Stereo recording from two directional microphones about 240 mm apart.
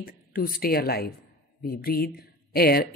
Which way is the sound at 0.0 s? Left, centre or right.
Left.